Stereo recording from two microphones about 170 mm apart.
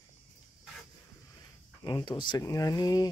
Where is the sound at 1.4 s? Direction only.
25° left (ahead or behind).